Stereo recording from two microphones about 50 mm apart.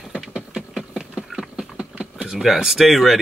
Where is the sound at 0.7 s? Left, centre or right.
Centre.